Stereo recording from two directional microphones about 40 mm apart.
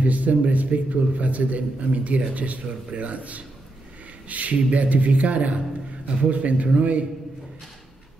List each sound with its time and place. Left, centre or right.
0.0 s a man's voice: right